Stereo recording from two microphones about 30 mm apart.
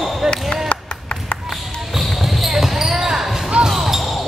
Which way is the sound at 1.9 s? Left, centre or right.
Centre.